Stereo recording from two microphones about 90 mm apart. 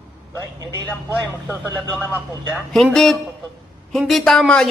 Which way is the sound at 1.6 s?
35° right (ahead or behind).